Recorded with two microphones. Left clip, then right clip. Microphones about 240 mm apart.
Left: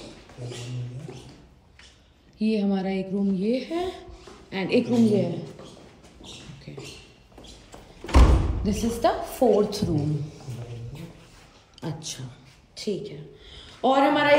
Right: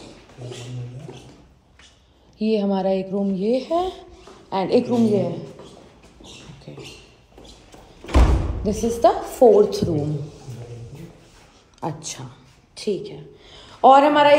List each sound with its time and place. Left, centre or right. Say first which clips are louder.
2.3 s a woman's voice: right 5 dB; centre
6.7 s speech: right 2 dB; right
8.6 s a woman's voice: right 7 dB; centre
11.8 s a woman's voice: right 6 dB; centre